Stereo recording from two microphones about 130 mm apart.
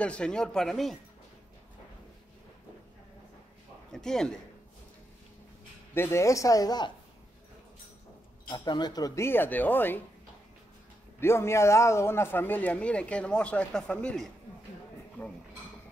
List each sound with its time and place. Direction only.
0.0 s speech: 10° left (ahead or behind)
3.9 s a man's voice: 5° left (ahead or behind)
5.9 s speech: 20° left (ahead or behind)
8.5 s speech: 35° left (ahead or behind); by 10.0 s 15° left (ahead or behind)
11.1 s speech: 20° left (ahead or behind)